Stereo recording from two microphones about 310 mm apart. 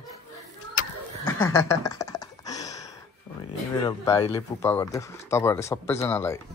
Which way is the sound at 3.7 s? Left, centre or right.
Centre.